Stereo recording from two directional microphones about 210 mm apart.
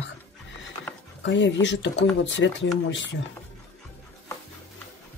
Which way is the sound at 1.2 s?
60° left (ahead or behind).